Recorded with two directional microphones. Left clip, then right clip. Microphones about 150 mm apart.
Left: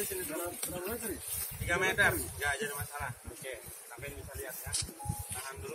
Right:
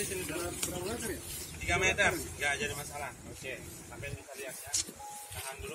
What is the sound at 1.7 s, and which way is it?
Speech, 40° right (ahead or behind).